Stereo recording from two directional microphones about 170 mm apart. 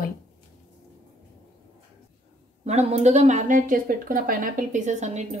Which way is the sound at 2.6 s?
40° right (ahead or behind).